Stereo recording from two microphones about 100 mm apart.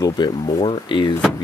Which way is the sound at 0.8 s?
50° left (ahead or behind).